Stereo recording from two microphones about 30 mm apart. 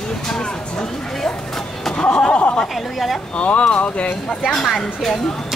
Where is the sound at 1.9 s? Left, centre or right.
Left.